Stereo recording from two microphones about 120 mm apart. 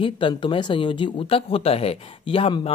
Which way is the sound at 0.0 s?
45° left (ahead or behind).